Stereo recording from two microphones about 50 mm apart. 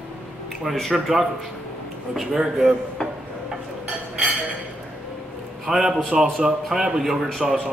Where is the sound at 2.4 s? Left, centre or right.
Centre.